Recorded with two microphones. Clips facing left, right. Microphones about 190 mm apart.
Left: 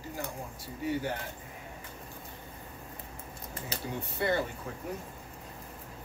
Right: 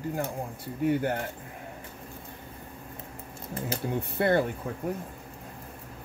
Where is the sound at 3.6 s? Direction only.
55° right (ahead or behind).